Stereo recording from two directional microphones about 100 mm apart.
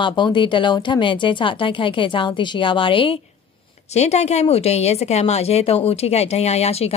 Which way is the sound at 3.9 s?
90° left.